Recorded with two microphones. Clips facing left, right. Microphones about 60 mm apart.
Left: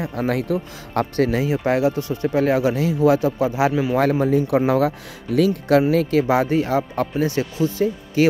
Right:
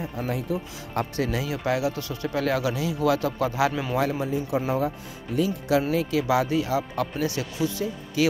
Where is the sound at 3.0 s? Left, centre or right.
Left.